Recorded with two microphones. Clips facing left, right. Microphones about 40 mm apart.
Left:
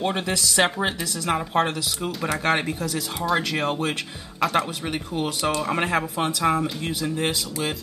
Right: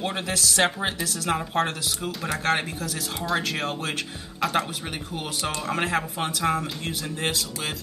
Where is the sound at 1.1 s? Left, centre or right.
Left.